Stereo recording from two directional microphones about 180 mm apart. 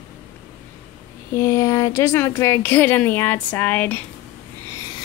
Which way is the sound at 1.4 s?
15° left (ahead or behind).